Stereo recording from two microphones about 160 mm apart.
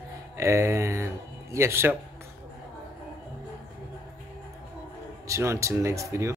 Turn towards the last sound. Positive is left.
turn(degrees=-15)  # may be behind; listen again after turning